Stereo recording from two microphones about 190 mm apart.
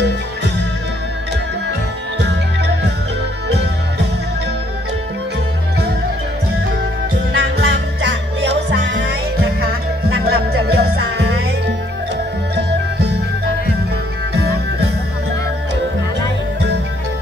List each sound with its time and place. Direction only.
2.1 s music: 65° right (ahead or behind)
7.3 s music: 70° right (ahead or behind)
9.6 s music: 55° right (ahead or behind)
14.3 s music: 55° right (ahead or behind)